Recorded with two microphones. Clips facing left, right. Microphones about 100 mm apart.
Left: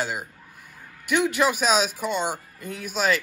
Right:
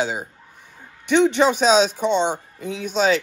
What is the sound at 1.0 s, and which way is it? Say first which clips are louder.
A man's voice: right 6 dB; 5° left (ahead or behind).